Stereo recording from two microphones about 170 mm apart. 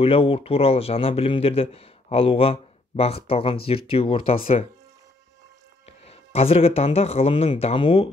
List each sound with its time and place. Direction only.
0.0 s speech: 35° left (ahead or behind)
5.9 s speech: 35° left (ahead or behind)